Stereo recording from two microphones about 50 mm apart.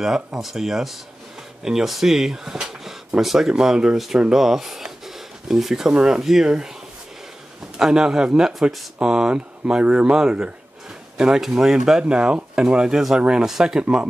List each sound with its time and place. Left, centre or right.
0.0 s speech: centre
4.3 s a sound: centre
5.9 s speech: centre
7.8 s speech: centre